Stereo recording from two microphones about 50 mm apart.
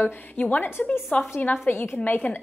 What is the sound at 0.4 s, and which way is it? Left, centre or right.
Speech, left.